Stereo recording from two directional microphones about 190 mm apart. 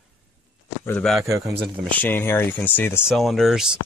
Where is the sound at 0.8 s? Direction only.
5° left (ahead or behind).